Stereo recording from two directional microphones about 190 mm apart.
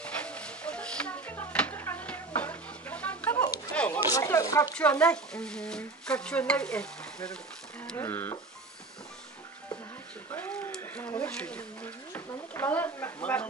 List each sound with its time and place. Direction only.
0.0 s a sound: 5° left (ahead or behind)
4.7 s speech: 5° left (ahead or behind)
10.3 s speech: 10° left (ahead or behind)